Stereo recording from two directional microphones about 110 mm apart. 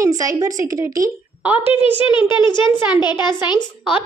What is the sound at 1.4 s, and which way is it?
Speech, 10° right (ahead or behind).